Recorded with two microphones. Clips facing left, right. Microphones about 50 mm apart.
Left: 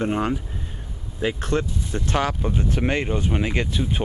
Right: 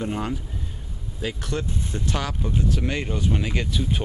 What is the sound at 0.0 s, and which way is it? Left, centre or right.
Speech, left.